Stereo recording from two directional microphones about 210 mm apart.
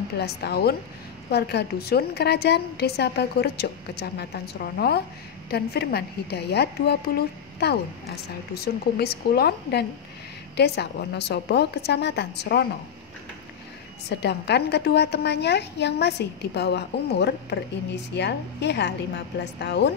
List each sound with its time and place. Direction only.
0.2 s a woman's voice: 50° left (ahead or behind)
14.0 s a woman's voice: 55° left (ahead or behind)